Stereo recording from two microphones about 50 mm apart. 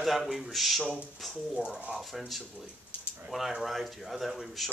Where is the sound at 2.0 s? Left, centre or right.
Centre.